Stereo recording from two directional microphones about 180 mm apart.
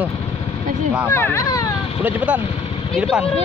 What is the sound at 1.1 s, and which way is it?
Speech, 15° left (ahead or behind).